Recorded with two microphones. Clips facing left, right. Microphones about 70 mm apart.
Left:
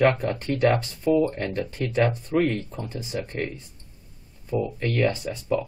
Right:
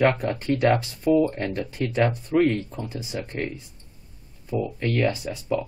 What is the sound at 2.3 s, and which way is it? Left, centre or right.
Speech, right.